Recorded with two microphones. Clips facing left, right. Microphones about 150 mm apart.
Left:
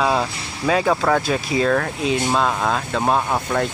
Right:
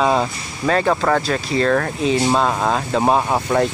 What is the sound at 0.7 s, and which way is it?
Speech, 5° left (ahead or behind).